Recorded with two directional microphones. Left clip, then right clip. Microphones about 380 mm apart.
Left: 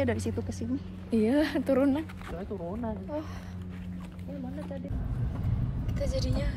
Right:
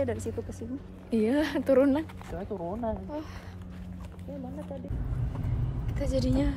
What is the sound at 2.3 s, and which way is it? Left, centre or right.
Speech, right.